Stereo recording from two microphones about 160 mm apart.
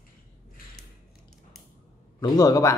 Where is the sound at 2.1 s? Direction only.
25° left (ahead or behind).